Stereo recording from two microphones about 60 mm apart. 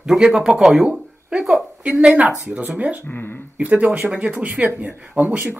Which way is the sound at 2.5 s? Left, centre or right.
Right.